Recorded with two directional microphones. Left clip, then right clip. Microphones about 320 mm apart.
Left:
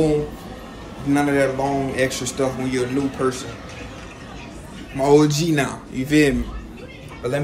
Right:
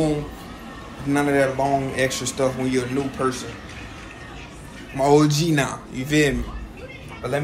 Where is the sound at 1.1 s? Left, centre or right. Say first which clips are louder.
Left 1 dB; centre.